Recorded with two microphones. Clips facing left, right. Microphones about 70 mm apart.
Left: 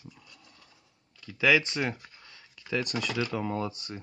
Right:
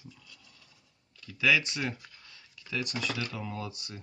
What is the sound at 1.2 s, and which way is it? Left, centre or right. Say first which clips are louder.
Speech: left 3 dB; left.